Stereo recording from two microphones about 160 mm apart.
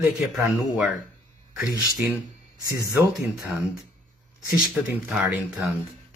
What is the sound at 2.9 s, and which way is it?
Speech, 20° right (ahead or behind).